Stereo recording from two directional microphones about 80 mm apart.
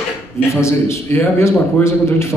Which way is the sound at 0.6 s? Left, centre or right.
Left.